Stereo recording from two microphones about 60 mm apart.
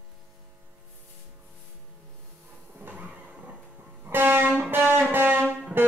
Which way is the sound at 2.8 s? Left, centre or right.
Right.